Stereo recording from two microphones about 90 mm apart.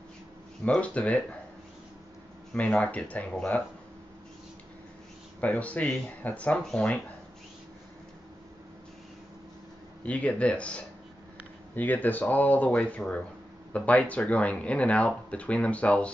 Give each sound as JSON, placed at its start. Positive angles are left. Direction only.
{"t": 0.7, "sound": "speech", "side_deg": 15}
{"t": 2.5, "sound": "speech", "side_deg": 15}
{"t": 5.4, "sound": "speech", "side_deg": 15}
{"t": 10.0, "sound": "speech", "side_deg": 15}